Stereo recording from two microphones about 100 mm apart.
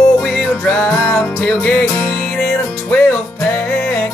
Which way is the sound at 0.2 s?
10° left (ahead or behind).